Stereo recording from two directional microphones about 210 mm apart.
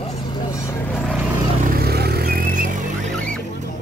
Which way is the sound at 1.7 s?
50° right (ahead or behind).